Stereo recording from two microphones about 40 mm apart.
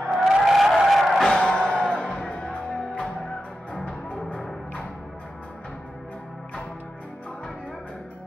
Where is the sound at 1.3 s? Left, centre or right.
Centre.